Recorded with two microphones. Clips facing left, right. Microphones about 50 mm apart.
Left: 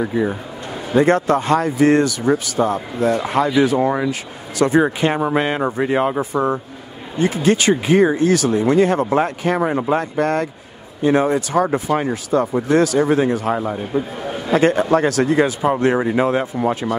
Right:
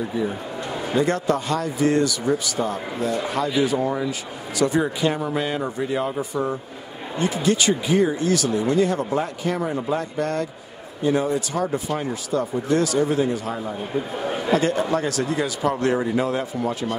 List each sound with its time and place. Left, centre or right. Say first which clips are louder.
0.9 s speech: left 7 dB; left
15.6 s speech: left 5 dB; left